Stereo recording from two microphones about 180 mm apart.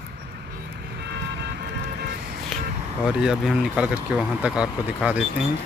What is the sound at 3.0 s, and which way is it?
Speech, 5° right (ahead or behind).